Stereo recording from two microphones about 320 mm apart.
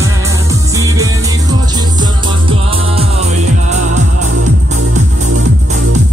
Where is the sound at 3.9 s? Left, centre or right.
Right.